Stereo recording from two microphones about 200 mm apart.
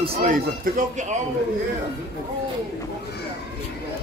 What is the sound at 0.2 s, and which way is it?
A man's voice, 40° right (ahead or behind).